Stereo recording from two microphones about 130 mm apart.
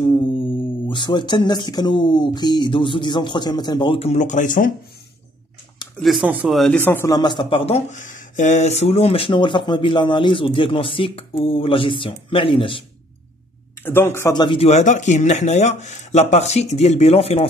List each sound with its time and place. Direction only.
0.8 s speech: 35° left (ahead or behind)
4.1 s speech: 70° left (ahead or behind); by 4.7 s 90° left
5.9 s speech: centre (ahead or behind)
6.2 s speech: 10° right (ahead or behind)
6.5 s speech: 5° left (ahead or behind)
6.8 s speech: 15° left (ahead or behind)
7.1 s speech: 35° left (ahead or behind)
7.9 s speech: 75° left (ahead or behind); by 12.8 s 40° left (ahead or behind)
13.8 s speech: 15° left (ahead or behind)
14.3 s speech: 35° left (ahead or behind)
14.6 s speech: 60° left (ahead or behind)